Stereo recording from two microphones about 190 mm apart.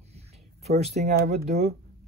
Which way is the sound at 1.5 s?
35° right (ahead or behind).